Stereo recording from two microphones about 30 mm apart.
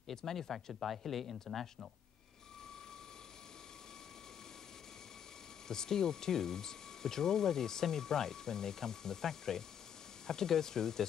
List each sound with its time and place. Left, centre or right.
0.1 s speech: centre
0.7 s speech: centre
5.7 s speech: centre